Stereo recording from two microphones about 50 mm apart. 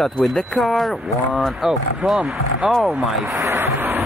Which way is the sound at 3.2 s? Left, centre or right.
Right.